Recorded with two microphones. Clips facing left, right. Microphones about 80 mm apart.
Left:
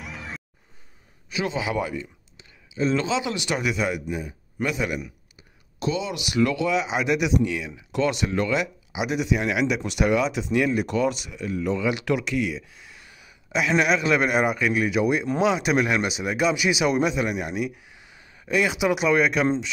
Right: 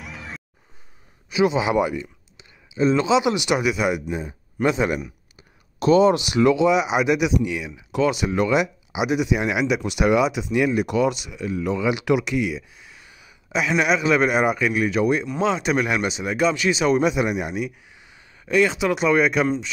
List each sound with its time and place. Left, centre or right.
0.0 s music: centre
1.3 s speech: centre
3.9 s speech: right
5.8 s speech: right
6.1 s speech: right; by 17.1 s centre
17.1 s speech: centre
17.6 s speech: centre